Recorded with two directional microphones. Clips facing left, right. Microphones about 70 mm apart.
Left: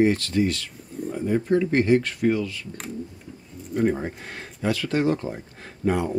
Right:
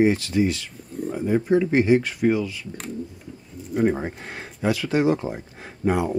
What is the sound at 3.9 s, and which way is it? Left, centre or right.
Speech, centre.